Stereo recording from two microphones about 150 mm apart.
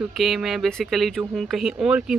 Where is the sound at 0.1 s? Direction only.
Centre (ahead or behind).